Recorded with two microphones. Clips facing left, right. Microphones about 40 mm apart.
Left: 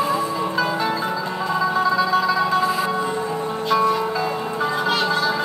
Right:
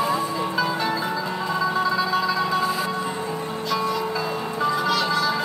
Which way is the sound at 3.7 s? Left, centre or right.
Left.